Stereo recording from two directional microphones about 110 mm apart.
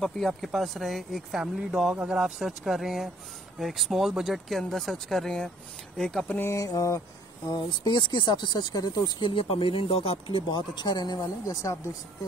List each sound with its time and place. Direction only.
0.0 s speech: centre (ahead or behind)
6.3 s mantra: 25° left (ahead or behind)
7.4 s speech: 40° left (ahead or behind)